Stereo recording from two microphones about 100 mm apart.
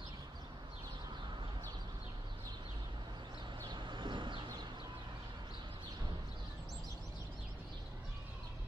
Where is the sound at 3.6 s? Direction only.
50° right (ahead or behind).